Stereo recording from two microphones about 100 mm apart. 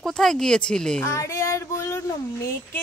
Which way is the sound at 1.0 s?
25° left (ahead or behind).